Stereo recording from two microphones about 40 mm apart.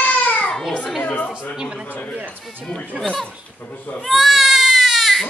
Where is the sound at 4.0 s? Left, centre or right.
Centre.